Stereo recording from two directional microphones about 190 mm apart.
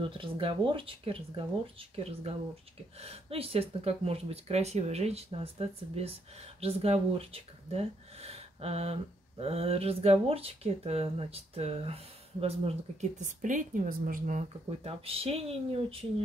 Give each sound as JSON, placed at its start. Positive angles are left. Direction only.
{"t": 0.0, "sound": "speech", "side_deg": -25}
{"t": 13.2, "sound": "speech", "side_deg": -40}